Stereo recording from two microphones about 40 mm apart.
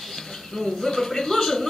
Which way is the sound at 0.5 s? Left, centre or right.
Centre.